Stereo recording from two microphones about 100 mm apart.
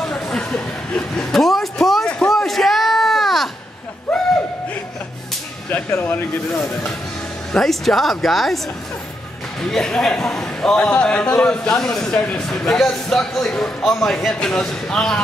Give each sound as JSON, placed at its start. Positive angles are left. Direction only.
{"t": 0.0, "sound": "chuckle", "side_deg": 10}
{"t": 4.1, "sound": "a sound", "side_deg": 5}
{"t": 5.7, "sound": "speech", "side_deg": 20}
{"t": 7.5, "sound": "speech", "side_deg": 5}
{"t": 9.6, "sound": "a man's voice", "side_deg": 5}